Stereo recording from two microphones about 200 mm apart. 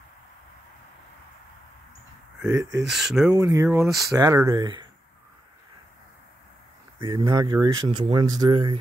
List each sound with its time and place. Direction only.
2.5 s speech: 15° right (ahead or behind)
2.9 s speech: centre (ahead or behind)
3.3 s speech: 15° right (ahead or behind)
7.0 s speech: 20° right (ahead or behind)